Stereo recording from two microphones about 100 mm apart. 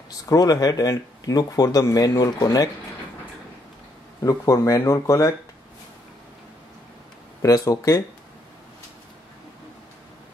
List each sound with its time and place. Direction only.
0.3 s speech: 40° left (ahead or behind)
4.2 s speech: 30° left (ahead or behind)
7.4 s speech: 35° left (ahead or behind)